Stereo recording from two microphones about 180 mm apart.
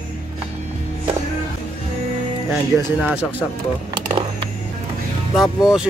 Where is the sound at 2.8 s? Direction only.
10° right (ahead or behind).